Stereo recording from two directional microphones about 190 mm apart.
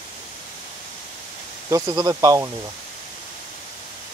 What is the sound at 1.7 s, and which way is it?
Speech, 20° right (ahead or behind).